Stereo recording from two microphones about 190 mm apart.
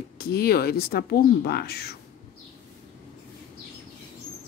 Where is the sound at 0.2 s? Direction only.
55° left (ahead or behind).